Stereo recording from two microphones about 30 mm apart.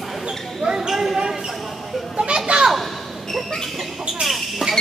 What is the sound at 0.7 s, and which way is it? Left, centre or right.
Basketball bounce, centre.